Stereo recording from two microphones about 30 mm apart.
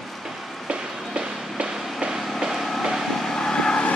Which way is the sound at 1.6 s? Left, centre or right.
Right.